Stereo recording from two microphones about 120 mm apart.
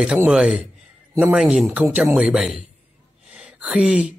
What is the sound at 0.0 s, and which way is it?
Speech, 5° right (ahead or behind).